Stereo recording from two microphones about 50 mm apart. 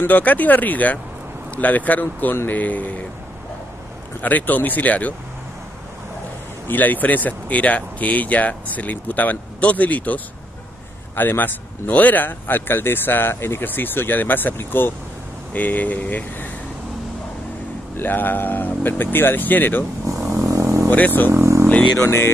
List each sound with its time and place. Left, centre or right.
0.0 s speech: left
4.2 s speech: left
6.7 s speech: left
17.9 s speech: left
20.3 s vehicle: right
20.9 s speech: left
21.3 s speech: right
22.0 s speech: left